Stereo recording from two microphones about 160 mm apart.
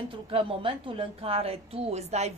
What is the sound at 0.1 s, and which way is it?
A woman's voice, 35° right (ahead or behind).